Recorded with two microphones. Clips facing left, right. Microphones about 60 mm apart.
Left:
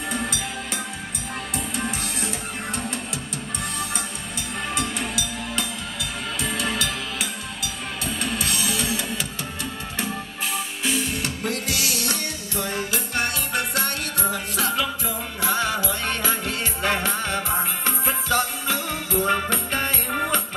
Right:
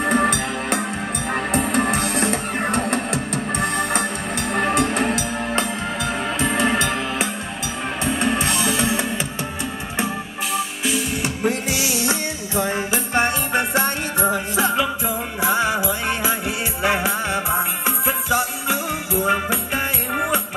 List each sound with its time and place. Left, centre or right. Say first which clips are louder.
0.0 s music: right 9 dB; right
6.4 s music: right 7 dB; right
10.5 s music: right 4 dB; centre
11.2 s music: right 5 dB; right